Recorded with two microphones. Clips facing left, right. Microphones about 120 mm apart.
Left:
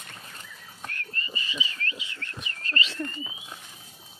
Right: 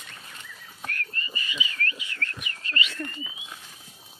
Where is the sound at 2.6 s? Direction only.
35° left (ahead or behind).